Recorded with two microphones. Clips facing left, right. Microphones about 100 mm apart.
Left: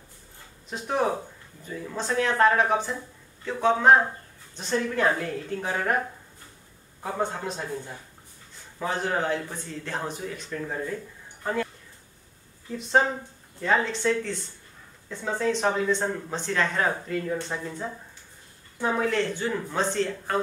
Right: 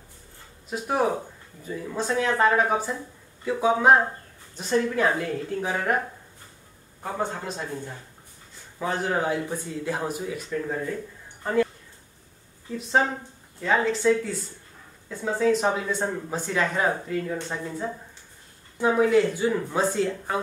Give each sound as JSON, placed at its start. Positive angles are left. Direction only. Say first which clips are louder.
{"t": 0.7, "sound": "speech", "louder": "right 2 dB", "side_deg": -5}
{"t": 7.0, "sound": "speech", "louder": "even", "side_deg": 0}
{"t": 8.7, "sound": "speech", "louder": "right 1 dB", "side_deg": -5}
{"t": 12.7, "sound": "speech", "louder": "even", "side_deg": 0}